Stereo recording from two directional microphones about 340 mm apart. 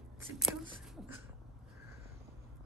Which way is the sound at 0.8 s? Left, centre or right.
Centre.